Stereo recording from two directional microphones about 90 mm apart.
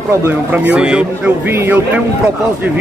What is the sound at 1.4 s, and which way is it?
Speech, 25° right (ahead or behind).